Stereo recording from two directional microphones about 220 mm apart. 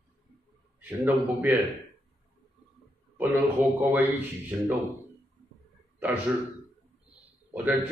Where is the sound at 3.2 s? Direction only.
10° right (ahead or behind).